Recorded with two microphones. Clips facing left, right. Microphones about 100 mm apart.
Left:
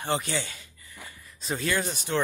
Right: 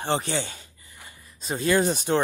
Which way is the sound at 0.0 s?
30° right (ahead or behind).